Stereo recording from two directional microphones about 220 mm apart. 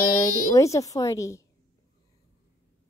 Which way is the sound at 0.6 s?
15° left (ahead or behind).